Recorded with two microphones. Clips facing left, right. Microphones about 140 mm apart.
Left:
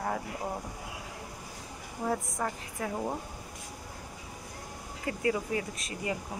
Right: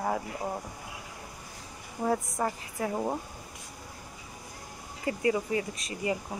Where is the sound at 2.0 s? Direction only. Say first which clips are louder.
Right 3 dB; 10° right (ahead or behind).